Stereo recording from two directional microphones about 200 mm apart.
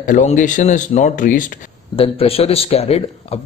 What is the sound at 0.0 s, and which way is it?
Speech, 40° left (ahead or behind).